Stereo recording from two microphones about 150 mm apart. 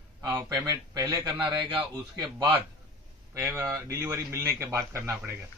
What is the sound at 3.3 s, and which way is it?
A man's voice, 15° right (ahead or behind).